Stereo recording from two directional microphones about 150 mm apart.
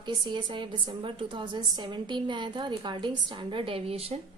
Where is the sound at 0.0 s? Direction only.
30° right (ahead or behind).